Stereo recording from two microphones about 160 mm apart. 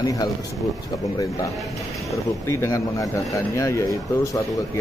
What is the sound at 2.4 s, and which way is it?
Speech, 15° left (ahead or behind).